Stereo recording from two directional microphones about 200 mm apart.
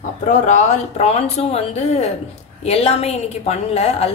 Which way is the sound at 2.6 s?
30° left (ahead or behind).